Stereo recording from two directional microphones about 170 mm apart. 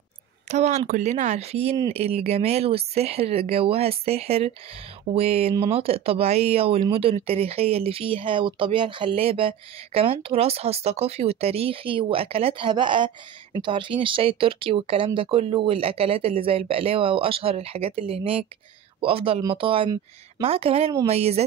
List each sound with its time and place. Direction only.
0.5 s speech: 40° right (ahead or behind)